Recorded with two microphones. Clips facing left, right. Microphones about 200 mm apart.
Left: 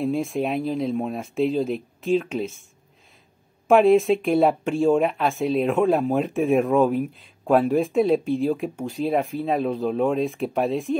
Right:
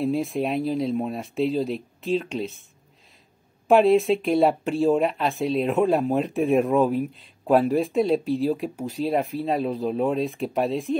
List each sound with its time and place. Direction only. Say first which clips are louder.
0.0 s speech: even; centre (ahead or behind)
3.6 s speech: left 1 dB; centre (ahead or behind)